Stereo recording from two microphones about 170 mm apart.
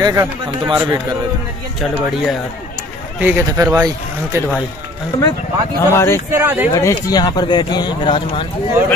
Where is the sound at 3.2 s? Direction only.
10° right (ahead or behind).